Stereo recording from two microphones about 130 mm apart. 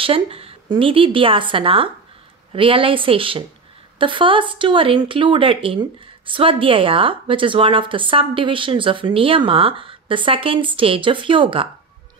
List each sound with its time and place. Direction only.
0.0 s a woman's voice: 45° right (ahead or behind)